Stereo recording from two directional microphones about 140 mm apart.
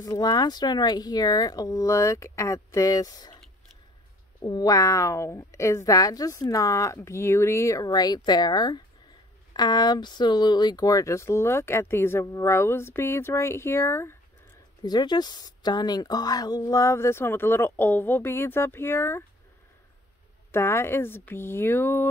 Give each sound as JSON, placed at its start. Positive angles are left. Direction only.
{"t": 0.0, "sound": "speech", "side_deg": 30}
{"t": 4.4, "sound": "speech", "side_deg": 30}
{"t": 14.8, "sound": "speech", "side_deg": 30}
{"t": 20.5, "sound": "speech", "side_deg": 20}